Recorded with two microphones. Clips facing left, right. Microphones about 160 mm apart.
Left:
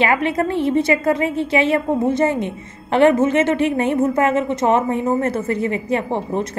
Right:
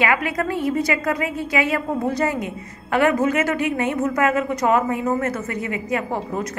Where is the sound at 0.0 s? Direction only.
30° left (ahead or behind).